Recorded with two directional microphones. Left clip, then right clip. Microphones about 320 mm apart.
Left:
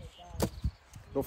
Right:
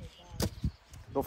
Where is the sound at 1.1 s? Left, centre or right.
Centre.